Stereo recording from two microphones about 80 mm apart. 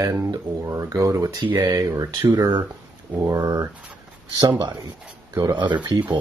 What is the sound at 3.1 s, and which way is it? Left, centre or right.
Speech, right.